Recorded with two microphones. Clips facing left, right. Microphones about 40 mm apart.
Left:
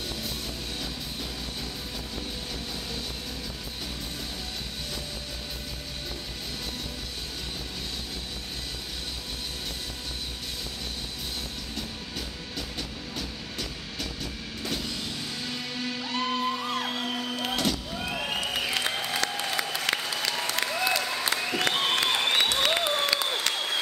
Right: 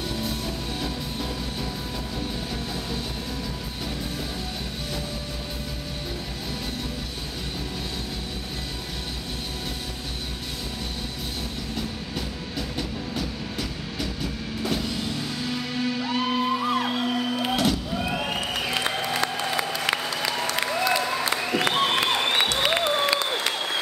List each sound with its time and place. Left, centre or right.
12.5 s music: centre
19.3 s applause: centre